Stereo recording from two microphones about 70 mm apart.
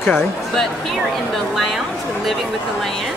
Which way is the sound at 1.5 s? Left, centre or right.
Centre.